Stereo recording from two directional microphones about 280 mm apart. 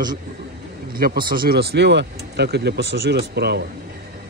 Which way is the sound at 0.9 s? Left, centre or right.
Right.